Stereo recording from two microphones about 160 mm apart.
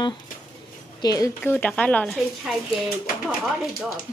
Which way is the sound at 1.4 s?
10° left (ahead or behind).